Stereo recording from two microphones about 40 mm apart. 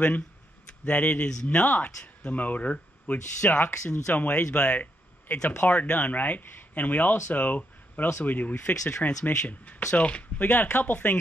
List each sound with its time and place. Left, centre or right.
0.8 s speech: left
1.1 s speech: left
1.6 s speech: left
9.9 s speech: left
10.4 s speech: left